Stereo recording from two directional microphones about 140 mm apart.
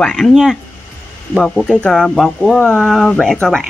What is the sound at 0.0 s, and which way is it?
Speech, 5° left (ahead or behind).